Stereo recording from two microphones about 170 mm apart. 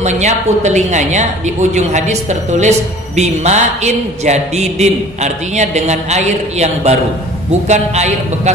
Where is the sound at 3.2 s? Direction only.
40° right (ahead or behind).